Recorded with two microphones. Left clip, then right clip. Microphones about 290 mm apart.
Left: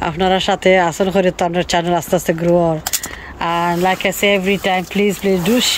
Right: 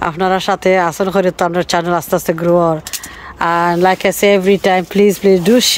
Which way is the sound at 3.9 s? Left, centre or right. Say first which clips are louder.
Right 3 dB; right.